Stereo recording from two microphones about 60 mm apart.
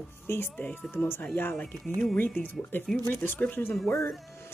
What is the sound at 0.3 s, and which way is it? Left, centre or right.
Speech, left.